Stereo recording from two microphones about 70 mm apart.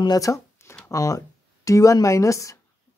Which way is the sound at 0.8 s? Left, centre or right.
Left.